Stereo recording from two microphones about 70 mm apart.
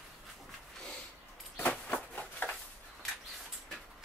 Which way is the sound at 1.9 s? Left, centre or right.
Left.